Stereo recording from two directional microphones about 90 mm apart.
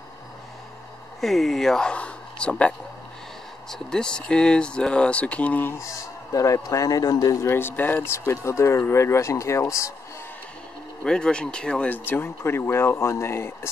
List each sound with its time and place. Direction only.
1.2 s speech: centre (ahead or behind)
3.7 s speech: 10° left (ahead or behind)
5.9 s speech: 40° left (ahead or behind)
7.4 s speech: 25° left (ahead or behind)
11.1 s speech: 10° left (ahead or behind)
11.9 s speech: 25° left (ahead or behind)